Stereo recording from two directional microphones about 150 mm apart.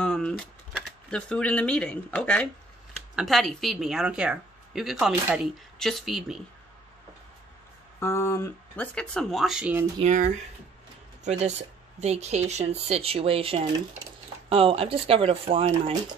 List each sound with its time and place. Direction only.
0.0 s a sound: 5° left (ahead or behind)
1.1 s a woman's voice: 10° left (ahead or behind)
8.0 s speech: 15° left (ahead or behind)
8.9 s a woman's voice: 5° left (ahead or behind)
9.9 s speech: 55° right (ahead or behind)